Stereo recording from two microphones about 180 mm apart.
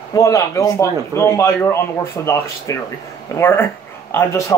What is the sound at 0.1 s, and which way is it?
A man's voice, 20° left (ahead or behind).